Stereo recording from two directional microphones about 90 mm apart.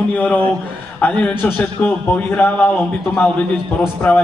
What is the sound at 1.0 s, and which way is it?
A man's voice, 20° left (ahead or behind).